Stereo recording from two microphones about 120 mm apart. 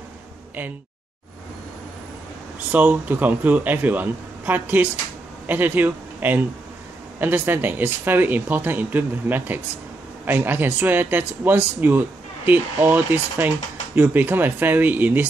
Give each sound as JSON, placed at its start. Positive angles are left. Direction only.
{"t": 2.7, "sound": "speech", "side_deg": -15}